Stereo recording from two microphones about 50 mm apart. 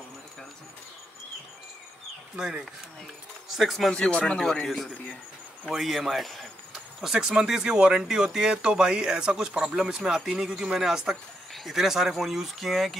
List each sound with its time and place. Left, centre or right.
2.3 s speech: centre
3.5 s speech: centre
3.9 s speech: centre
5.7 s speech: centre
7.0 s speech: centre